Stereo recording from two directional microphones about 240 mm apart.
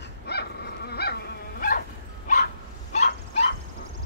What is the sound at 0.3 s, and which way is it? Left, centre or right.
Dog, left.